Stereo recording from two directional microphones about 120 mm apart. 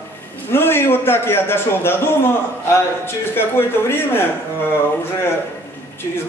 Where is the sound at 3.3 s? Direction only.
20° left (ahead or behind).